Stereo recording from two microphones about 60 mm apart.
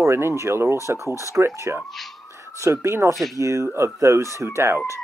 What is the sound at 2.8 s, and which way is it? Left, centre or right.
Speech, right.